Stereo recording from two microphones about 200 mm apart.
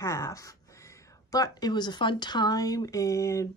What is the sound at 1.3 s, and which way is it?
Speech, 20° left (ahead or behind).